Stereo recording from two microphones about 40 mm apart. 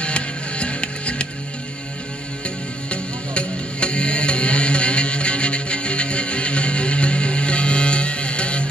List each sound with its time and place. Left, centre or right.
0.0 s music: left
2.4 s music: left